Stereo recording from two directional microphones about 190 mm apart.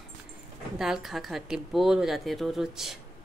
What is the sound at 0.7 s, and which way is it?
A woman's voice, centre (ahead or behind).